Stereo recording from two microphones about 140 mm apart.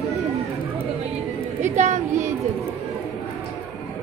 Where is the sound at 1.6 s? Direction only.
55° right (ahead or behind).